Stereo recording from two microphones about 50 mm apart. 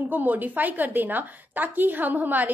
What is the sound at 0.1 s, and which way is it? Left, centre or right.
A woman's voice, right.